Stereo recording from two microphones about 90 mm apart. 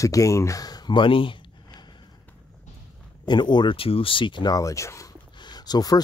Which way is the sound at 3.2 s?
55° left (ahead or behind).